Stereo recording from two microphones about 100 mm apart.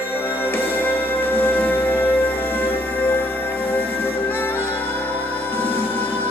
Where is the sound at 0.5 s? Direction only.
20° left (ahead or behind).